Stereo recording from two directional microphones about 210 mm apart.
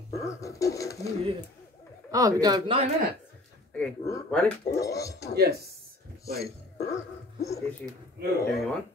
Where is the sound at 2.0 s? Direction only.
15° right (ahead or behind).